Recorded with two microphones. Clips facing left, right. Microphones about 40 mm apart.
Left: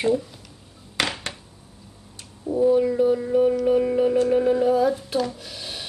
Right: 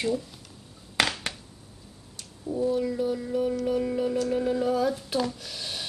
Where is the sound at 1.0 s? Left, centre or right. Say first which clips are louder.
Even; centre.